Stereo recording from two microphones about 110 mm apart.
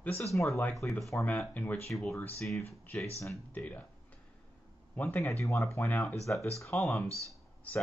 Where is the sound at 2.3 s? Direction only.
Centre (ahead or behind).